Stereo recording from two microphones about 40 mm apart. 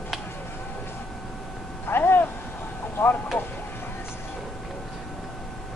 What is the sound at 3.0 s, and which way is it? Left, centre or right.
Vehicle, left.